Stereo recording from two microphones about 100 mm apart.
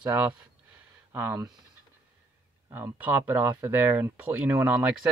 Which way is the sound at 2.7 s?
20° right (ahead or behind).